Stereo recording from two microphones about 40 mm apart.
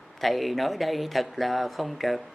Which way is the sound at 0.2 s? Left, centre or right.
Centre.